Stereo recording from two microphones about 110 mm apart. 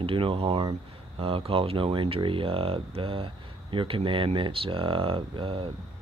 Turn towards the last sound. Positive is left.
turn(degrees=-55)  # may be behind; listen again after turning